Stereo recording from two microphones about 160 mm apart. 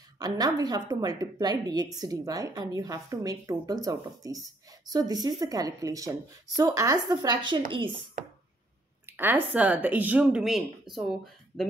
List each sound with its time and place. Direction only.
0.2 s a woman's voice: 25° right (ahead or behind)
9.0 s speech: 10° right (ahead or behind)